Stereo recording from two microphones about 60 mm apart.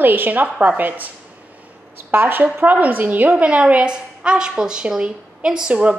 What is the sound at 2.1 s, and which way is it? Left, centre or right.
A woman's voice, right.